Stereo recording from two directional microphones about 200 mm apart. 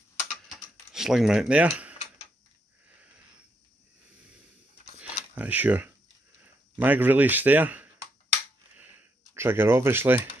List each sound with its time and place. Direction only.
0.9 s speech: centre (ahead or behind)
4.9 s a sound: 10° right (ahead or behind)
6.4 s speech: 10° right (ahead or behind)
9.3 s speech: 10° right (ahead or behind)